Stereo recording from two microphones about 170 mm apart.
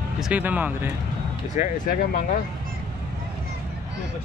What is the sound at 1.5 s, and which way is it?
Speech, 50° left (ahead or behind).